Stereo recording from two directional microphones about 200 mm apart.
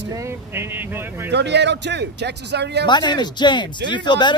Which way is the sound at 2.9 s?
20° left (ahead or behind).